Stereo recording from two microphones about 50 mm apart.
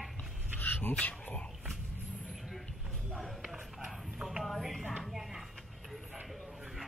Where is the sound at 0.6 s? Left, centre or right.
Left.